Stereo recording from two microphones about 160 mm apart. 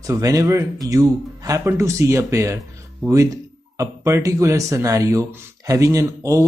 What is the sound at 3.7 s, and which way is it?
Speech, 20° right (ahead or behind).